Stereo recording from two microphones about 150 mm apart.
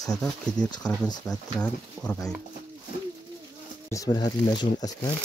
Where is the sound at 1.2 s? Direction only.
5° left (ahead or behind).